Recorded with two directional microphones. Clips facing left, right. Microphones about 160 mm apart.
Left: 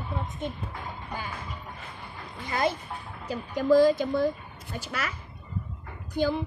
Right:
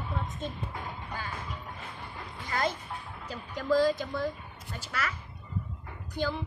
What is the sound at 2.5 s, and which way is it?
A woman's voice, 15° left (ahead or behind).